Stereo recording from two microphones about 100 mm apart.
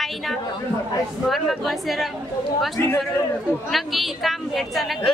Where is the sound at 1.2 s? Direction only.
Centre (ahead or behind).